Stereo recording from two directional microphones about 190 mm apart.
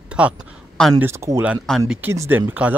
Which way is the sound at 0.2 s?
5° right (ahead or behind).